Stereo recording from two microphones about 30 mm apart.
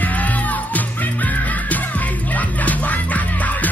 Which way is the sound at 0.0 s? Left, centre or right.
Left.